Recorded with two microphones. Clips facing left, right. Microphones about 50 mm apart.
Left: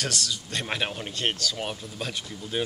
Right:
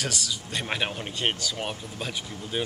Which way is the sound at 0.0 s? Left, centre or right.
Centre.